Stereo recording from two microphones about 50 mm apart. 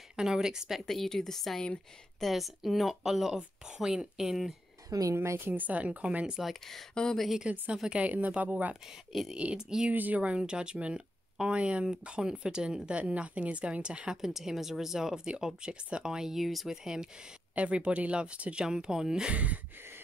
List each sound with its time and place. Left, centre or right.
0.1 s speech: centre
0.7 s a woman's voice: centre
5.1 s a woman's voice: right
5.5 s speech: right
6.7 s a woman's voice: centre
7.7 s speech: centre
8.0 s speech: right
10.2 s speech: right
14.1 s speech: centre
17.6 s speech: right
19.3 s speech: right